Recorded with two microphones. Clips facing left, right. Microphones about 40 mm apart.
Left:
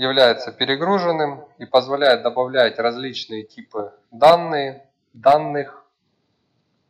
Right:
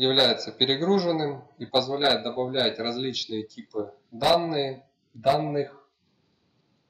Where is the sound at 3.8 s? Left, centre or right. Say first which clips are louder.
Left 13 dB; left.